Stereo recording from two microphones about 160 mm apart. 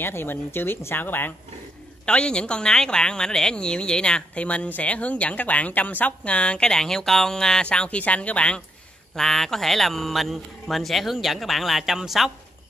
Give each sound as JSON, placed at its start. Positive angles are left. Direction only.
{"t": 0.0, "sound": "a woman's voice", "side_deg": 15}